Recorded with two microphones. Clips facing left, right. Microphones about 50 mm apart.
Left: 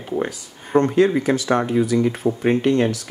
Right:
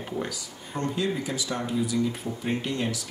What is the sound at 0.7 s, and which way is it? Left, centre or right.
Speech, left.